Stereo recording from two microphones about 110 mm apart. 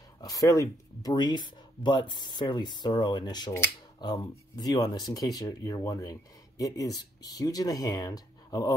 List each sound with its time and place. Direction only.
0.2 s speech: 30° left (ahead or behind)